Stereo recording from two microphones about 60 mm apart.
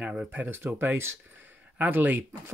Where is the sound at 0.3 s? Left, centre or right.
Right.